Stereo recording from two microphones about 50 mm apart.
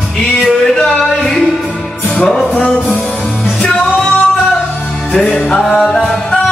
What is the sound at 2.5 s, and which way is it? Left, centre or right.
Music, left.